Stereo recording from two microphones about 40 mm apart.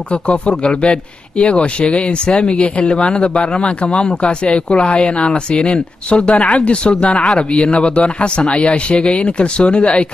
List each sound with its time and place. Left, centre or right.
0.1 s a man's voice: left